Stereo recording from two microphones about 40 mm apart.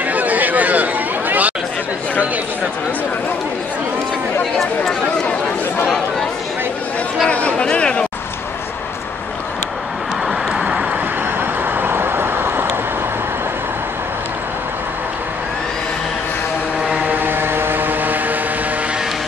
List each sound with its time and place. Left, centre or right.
0.0 s chatter: right
7.2 s chatter: left
7.7 s a sound: left
10.6 s vehicle: right
11.6 s vehicle: right
17.0 s vehicle: right